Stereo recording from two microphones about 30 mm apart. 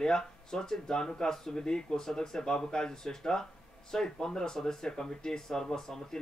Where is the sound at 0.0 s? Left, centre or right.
Left.